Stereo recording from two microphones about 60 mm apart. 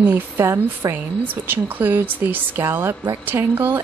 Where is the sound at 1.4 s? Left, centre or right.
Right.